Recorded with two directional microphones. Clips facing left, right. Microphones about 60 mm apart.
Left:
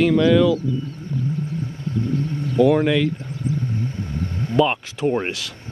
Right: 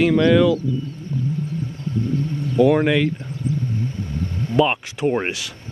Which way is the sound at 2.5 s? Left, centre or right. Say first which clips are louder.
Even; centre.